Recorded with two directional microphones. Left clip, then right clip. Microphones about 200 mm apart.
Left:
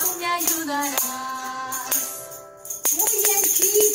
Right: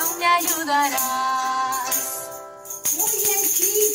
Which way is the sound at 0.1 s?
45° right (ahead or behind).